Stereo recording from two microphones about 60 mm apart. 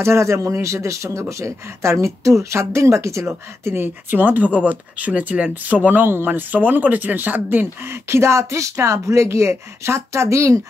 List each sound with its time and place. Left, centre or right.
0.0 s speech: right
3.7 s speech: right
7.8 s speech: right